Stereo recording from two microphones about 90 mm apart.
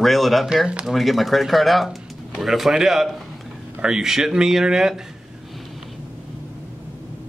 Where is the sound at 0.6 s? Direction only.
10° right (ahead or behind).